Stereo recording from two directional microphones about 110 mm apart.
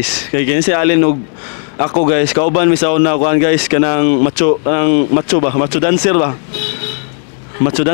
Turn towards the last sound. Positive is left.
turn(degrees=15)  # may be behind; listen again after turning